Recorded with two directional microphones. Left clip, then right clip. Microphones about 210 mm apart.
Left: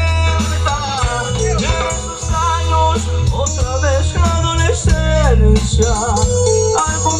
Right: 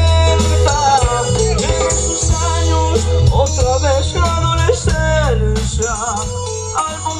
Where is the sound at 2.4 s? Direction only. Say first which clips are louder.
Left 5 dB; 30° right (ahead or behind).